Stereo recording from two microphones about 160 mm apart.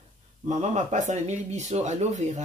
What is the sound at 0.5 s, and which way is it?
Speech, 45° right (ahead or behind).